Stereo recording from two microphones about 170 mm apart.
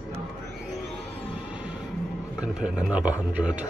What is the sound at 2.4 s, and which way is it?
A man's voice, 5° right (ahead or behind).